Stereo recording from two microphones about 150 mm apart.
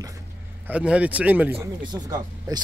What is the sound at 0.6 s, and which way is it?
Speech, 10° right (ahead or behind).